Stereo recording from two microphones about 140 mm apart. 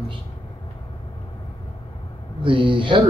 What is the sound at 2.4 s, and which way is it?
Speech, 35° right (ahead or behind).